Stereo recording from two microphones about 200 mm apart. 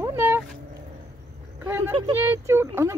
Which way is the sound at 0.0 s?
15° right (ahead or behind).